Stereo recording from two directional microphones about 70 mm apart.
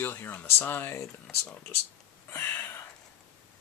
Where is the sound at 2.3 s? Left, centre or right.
Left.